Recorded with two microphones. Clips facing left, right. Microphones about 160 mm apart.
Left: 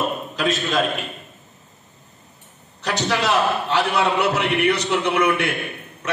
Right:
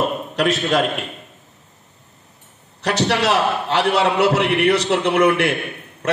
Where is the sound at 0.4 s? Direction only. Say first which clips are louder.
Right 4 dB; 75° right (ahead or behind).